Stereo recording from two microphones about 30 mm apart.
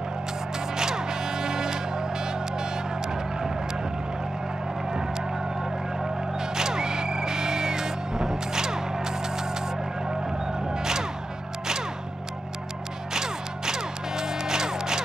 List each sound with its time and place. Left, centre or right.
0.7 s music: right
4.8 s a sound: centre
6.4 s music: right
13.1 s music: right